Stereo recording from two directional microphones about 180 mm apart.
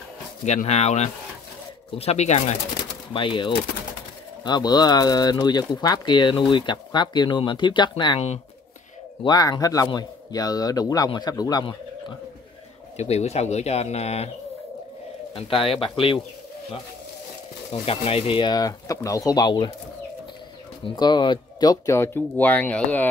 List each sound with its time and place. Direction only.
0.5 s a man's voice: 40° left (ahead or behind)
9.2 s a man's voice: 20° left (ahead or behind)
12.9 s speech: 35° left (ahead or behind)
15.3 s speech: 30° left (ahead or behind)
17.8 s a man's voice: 30° left (ahead or behind)
20.8 s speech: 25° left (ahead or behind); by 23.0 s 10° left (ahead or behind)